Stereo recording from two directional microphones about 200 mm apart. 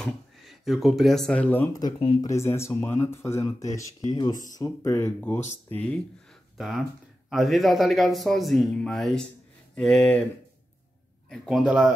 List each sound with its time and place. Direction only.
0.0 s speech: centre (ahead or behind); by 2.1 s 25° left (ahead or behind)
2.2 s speech: 15° left (ahead or behind)
7.2 s a man's voice: centre (ahead or behind)
11.2 s a man's voice: centre (ahead or behind)